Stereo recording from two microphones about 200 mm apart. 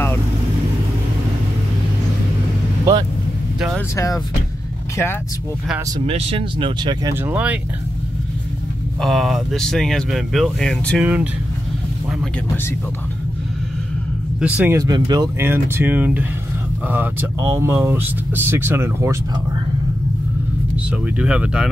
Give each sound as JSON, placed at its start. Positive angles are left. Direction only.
{"t": 2.8, "sound": "vehicle", "side_deg": -20}
{"t": 3.5, "sound": "vehicle", "side_deg": -5}
{"t": 3.9, "sound": "speech", "side_deg": 15}
{"t": 5.9, "sound": "speech", "side_deg": -30}
{"t": 7.2, "sound": "speech", "side_deg": -5}
{"t": 9.0, "sound": "speech", "side_deg": 0}
{"t": 14.4, "sound": "speech", "side_deg": -10}
{"t": 21.2, "sound": "speech", "side_deg": -5}